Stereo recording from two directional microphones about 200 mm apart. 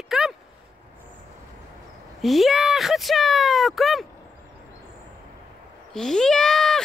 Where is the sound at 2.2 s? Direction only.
Centre (ahead or behind).